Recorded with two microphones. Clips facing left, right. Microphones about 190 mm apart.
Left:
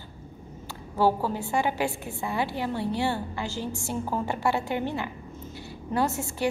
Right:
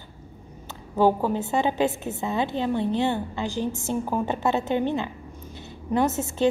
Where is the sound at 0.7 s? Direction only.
20° right (ahead or behind).